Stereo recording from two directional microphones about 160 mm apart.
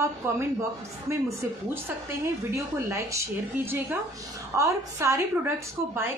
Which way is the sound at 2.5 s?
20° right (ahead or behind).